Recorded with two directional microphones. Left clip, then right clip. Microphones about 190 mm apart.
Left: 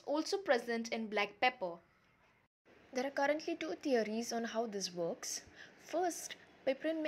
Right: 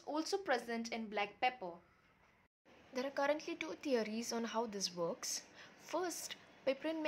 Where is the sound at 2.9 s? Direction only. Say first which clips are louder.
Left 2 dB; 10° left (ahead or behind).